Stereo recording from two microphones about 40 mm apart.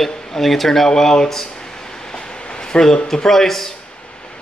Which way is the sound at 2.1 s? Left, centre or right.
Left.